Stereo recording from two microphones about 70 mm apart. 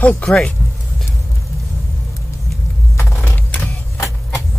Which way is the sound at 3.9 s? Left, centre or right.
Left.